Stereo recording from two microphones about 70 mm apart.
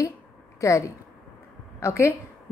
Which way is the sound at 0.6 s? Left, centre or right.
Left.